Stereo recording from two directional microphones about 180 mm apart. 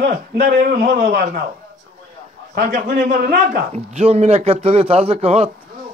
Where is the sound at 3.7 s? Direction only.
35° right (ahead or behind).